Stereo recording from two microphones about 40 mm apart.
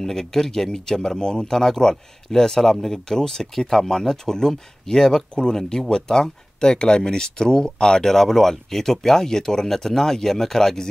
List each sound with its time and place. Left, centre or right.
0.0 s speech: centre
8.1 s speech: centre